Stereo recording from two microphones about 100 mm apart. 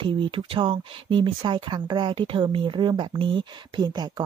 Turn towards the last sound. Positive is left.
turn(degrees=-45)  # may be behind; listen again after turning